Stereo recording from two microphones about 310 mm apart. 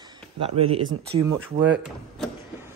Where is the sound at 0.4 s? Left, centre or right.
Centre.